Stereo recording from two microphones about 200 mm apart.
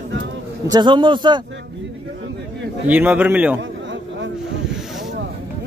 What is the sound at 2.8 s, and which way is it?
Speech, 10° right (ahead or behind).